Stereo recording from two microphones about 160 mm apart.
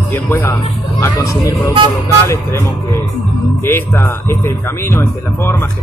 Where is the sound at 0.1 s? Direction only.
15° left (ahead or behind).